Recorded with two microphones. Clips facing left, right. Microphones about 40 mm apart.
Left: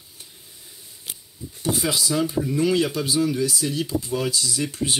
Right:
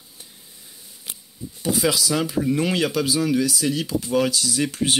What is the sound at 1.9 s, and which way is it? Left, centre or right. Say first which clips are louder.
Speech: right 1 dB; right.